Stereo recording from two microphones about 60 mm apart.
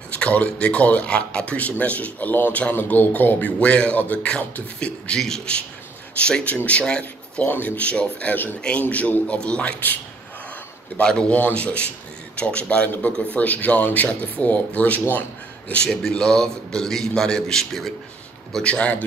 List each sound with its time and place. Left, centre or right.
0.2 s a man's voice: centre
7.4 s speech: left
11.0 s a man's voice: centre
15.7 s a man's voice: centre
18.5 s speech: centre